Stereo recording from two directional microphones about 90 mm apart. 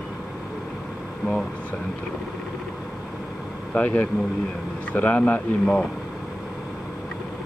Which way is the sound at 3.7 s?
20° left (ahead or behind).